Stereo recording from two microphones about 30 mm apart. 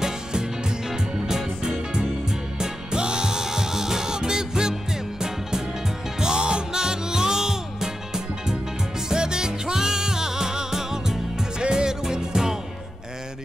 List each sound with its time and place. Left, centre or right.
0.0 s music: right
6.1 s music: right